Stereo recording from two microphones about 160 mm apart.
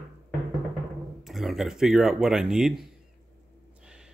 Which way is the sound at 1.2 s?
Centre (ahead or behind).